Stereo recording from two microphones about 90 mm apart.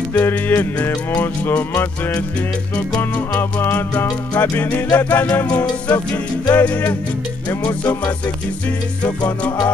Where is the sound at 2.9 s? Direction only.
20° left (ahead or behind).